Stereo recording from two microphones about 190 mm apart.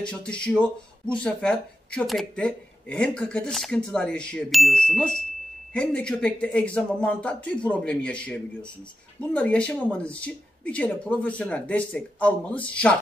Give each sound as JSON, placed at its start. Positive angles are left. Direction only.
{"t": 0.0, "sound": "speech", "side_deg": 5}